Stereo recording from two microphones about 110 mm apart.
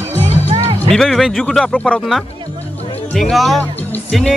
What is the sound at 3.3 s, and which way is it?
Speech, centre (ahead or behind).